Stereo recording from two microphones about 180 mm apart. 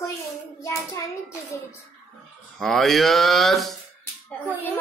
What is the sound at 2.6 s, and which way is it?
Speech, centre (ahead or behind).